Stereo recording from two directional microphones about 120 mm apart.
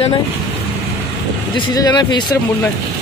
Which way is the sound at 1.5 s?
35° left (ahead or behind).